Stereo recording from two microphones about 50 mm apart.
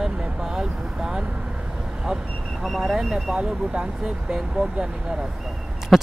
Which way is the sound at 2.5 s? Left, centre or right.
Centre.